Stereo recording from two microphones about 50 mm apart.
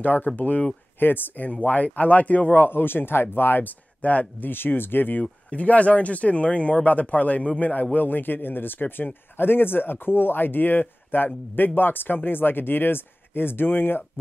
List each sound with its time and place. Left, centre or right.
0.0 s speech: left
4.0 s speech: left
4.5 s speech: left
5.2 s speech: left